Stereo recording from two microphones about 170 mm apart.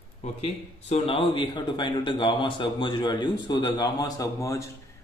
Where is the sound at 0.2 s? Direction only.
40° left (ahead or behind); by 4.6 s 20° left (ahead or behind).